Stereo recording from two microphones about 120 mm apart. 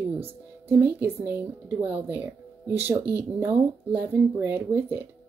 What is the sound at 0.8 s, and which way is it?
Speech, 20° right (ahead or behind).